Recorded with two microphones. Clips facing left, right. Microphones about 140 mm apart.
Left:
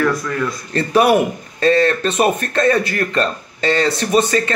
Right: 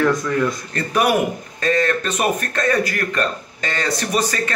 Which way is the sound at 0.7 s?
30° left (ahead or behind).